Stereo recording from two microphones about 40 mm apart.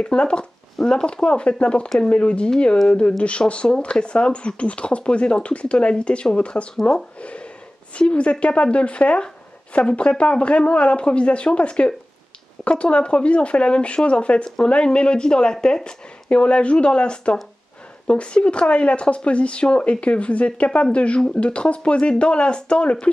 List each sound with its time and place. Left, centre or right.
0.0 s speech: left
6.7 s speech: centre
7.2 s speech: left